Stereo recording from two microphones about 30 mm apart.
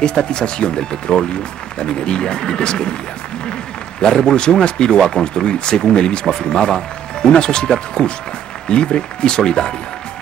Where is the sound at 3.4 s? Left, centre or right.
Left.